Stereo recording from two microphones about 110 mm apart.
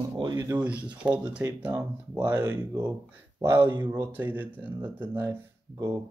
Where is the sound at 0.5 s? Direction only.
20° right (ahead or behind).